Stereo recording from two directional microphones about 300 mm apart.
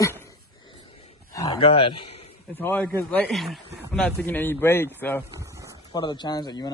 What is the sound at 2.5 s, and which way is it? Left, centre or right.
A man's voice, centre.